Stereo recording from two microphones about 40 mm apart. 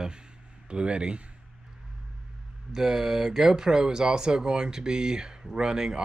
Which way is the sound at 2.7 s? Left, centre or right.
Centre.